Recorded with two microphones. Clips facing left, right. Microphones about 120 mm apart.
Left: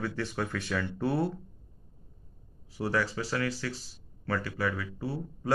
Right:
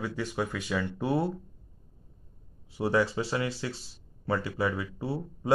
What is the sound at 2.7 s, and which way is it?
Speech, 20° right (ahead or behind).